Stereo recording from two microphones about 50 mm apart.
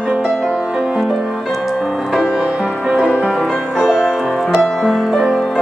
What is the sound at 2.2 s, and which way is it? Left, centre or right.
Music, centre.